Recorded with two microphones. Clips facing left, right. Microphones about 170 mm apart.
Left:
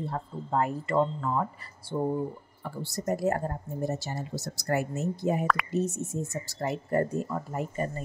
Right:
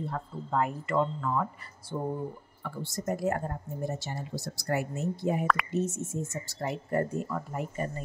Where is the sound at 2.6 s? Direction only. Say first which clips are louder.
Left 1 dB; 35° left (ahead or behind).